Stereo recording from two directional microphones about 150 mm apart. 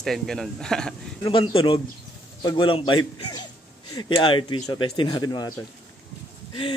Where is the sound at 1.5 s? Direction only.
35° left (ahead or behind).